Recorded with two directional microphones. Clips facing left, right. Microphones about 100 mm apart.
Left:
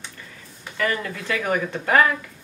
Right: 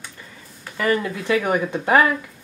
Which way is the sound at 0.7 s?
15° right (ahead or behind).